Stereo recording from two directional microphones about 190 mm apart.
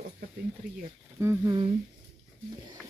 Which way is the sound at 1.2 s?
15° right (ahead or behind).